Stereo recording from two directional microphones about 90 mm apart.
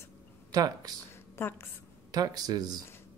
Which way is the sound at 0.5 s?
50° right (ahead or behind).